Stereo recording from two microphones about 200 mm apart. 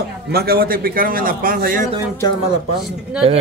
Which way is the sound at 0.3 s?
50° right (ahead or behind).